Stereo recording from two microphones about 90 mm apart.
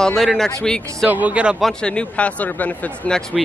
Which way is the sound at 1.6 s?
10° left (ahead or behind).